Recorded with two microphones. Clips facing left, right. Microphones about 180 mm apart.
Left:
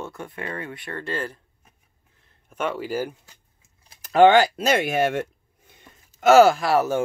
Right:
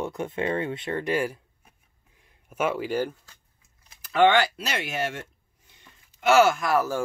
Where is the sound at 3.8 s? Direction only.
40° left (ahead or behind); by 5.2 s 55° left (ahead or behind).